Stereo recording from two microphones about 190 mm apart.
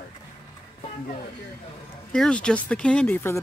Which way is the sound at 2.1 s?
5° left (ahead or behind).